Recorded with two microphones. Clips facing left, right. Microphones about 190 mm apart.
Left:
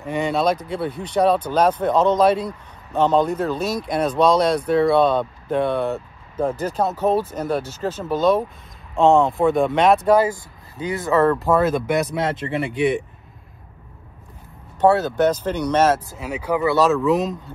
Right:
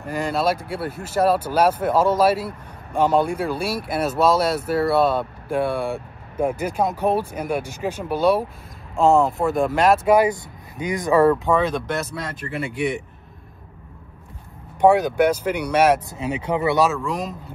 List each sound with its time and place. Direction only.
0.0 s speech: centre (ahead or behind)
10.1 s speech: 15° right (ahead or behind)
11.3 s speech: 5° left (ahead or behind); by 12.8 s 25° left (ahead or behind)
14.8 s speech: 15° right (ahead or behind)
16.2 s speech: 25° right (ahead or behind)
16.9 s speech: centre (ahead or behind)